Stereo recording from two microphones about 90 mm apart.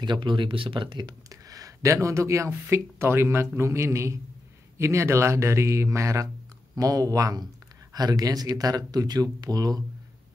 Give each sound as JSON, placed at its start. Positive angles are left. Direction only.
{"t": 0.0, "sound": "speech", "side_deg": -60}
{"t": 0.8, "sound": "speech", "side_deg": -50}